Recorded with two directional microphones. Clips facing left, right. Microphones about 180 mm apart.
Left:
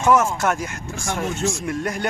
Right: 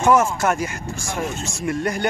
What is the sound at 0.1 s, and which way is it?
Speech, centre (ahead or behind).